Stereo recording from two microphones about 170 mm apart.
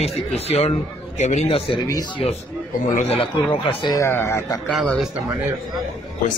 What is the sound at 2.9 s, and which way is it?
Speech, 35° left (ahead or behind).